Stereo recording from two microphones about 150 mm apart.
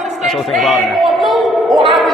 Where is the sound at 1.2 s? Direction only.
Centre (ahead or behind).